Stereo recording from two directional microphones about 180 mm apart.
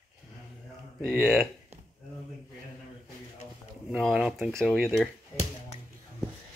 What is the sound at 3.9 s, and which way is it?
Speech, 5° right (ahead or behind).